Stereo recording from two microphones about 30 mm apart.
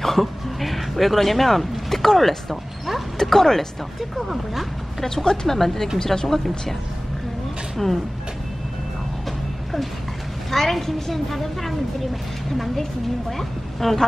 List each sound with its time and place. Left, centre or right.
0.0 s speech: centre
3.2 s a woman's voice: centre
5.0 s speech: left
5.5 s a woman's voice: centre
7.8 s a woman's voice: centre
10.5 s a woman's voice: centre
13.4 s a woman's voice: centre